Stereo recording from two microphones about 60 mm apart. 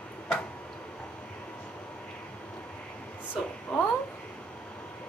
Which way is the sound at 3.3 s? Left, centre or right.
Left.